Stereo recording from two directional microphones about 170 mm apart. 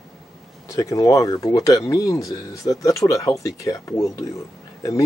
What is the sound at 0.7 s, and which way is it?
Speech, 20° left (ahead or behind).